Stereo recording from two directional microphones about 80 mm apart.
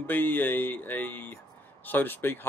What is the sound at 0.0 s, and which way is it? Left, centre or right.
Speech, left.